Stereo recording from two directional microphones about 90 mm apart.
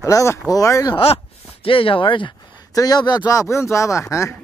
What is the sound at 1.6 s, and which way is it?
Speech, 80° left.